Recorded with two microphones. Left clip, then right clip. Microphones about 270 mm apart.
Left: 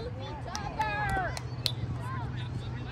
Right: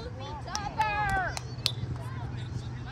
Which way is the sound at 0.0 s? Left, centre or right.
Centre.